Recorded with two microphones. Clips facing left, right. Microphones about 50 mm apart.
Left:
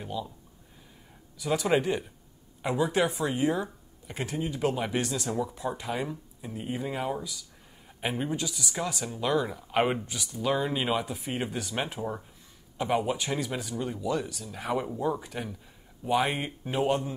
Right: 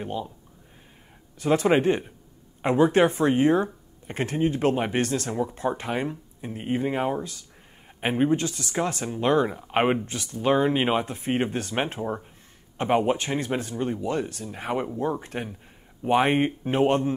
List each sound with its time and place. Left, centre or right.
0.0 s speech: right
1.4 s speech: right
12.0 s speech: right
12.7 s speech: right